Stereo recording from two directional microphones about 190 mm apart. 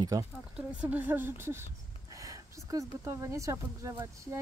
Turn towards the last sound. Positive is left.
turn(degrees=-15)  # may be behind; listen again after turning